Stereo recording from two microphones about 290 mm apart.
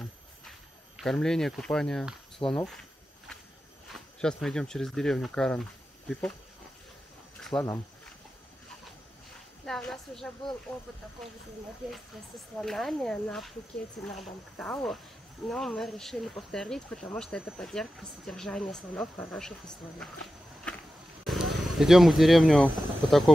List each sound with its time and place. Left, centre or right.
0.0 s a sound: centre
3.9 s speech: centre
7.3 s cricket: centre
9.7 s speech: centre
11.9 s speech: centre
21.2 s speech: centre